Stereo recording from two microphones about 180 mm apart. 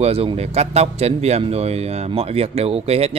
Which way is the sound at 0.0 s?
35° right (ahead or behind).